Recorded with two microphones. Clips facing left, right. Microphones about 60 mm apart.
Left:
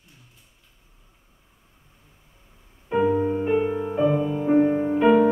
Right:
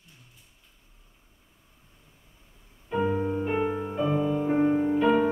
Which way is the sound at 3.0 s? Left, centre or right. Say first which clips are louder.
Left 5 dB; centre.